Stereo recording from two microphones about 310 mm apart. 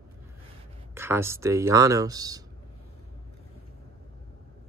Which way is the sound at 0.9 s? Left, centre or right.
Centre.